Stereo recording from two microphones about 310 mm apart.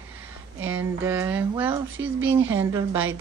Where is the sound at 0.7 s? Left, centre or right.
Centre.